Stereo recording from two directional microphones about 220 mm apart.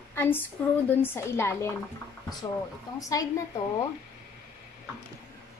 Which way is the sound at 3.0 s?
15° left (ahead or behind).